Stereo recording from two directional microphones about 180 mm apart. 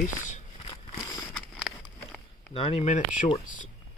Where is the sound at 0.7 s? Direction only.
20° left (ahead or behind).